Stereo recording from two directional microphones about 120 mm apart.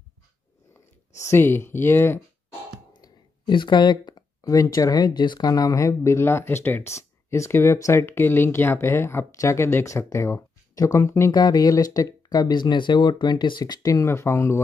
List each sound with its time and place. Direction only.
1.1 s speech: 25° left (ahead or behind)
3.0 s speech: 40° left (ahead or behind)
14.0 s speech: 20° left (ahead or behind)